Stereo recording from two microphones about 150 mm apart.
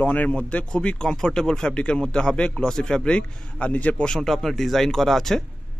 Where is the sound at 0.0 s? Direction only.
10° left (ahead or behind).